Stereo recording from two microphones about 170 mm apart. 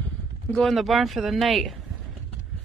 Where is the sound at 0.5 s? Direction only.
5° left (ahead or behind).